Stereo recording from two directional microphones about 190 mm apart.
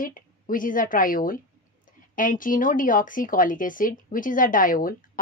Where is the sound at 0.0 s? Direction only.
45° left (ahead or behind).